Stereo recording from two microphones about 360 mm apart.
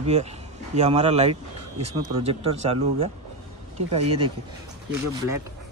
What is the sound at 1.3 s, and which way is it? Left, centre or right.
Speech, right.